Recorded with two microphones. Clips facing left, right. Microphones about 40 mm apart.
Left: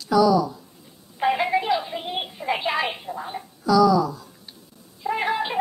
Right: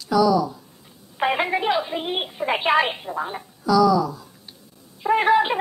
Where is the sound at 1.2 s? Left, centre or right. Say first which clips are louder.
Even; right.